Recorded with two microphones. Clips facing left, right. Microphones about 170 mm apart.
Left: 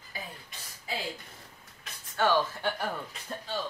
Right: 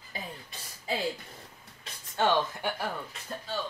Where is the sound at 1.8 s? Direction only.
20° right (ahead or behind).